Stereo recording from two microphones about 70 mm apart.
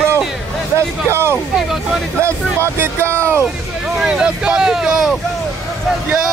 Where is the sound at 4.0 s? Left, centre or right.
Centre.